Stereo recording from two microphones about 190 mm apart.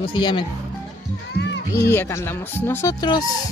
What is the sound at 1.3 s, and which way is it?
Music, 65° left (ahead or behind).